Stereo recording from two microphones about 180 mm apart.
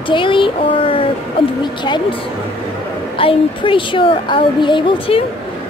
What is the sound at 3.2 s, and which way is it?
A woman's voice, 30° left (ahead or behind).